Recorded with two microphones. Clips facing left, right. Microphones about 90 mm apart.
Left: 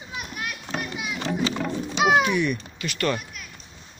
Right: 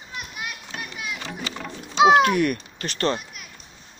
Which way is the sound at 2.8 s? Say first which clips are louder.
Right 1 dB; 35° right (ahead or behind).